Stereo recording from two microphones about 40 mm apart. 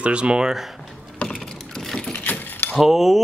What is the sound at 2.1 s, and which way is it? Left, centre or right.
Keys jangling, left.